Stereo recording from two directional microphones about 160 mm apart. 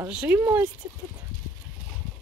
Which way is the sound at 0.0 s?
10° right (ahead or behind).